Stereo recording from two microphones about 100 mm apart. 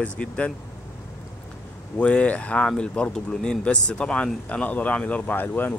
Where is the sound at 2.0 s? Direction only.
15° left (ahead or behind).